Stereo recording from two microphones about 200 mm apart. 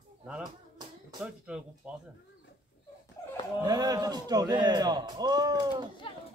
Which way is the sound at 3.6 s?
20° right (ahead or behind).